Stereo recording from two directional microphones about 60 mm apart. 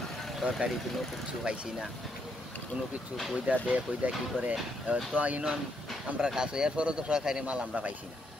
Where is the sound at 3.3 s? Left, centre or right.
Right.